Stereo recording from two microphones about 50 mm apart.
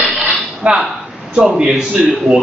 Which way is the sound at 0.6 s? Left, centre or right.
Right.